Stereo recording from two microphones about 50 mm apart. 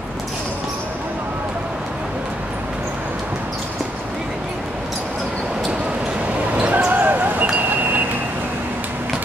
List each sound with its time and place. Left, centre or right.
6.5 s basketball bounce: right